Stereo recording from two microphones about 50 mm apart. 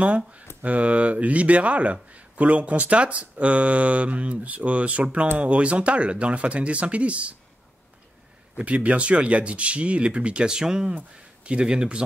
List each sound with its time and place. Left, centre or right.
0.0 s speech: right
8.5 s speech: right